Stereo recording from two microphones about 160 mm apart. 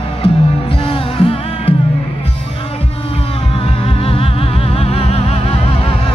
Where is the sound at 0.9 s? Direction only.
35° left (ahead or behind).